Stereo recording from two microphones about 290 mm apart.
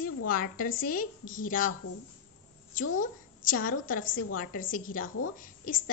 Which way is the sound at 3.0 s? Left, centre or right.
Left.